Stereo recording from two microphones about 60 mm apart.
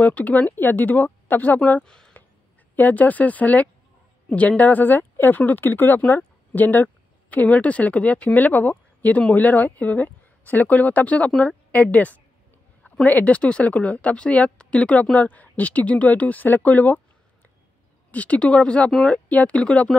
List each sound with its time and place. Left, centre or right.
0.0 s speech: left
1.8 s speech: centre
2.7 s speech: left
18.1 s speech: left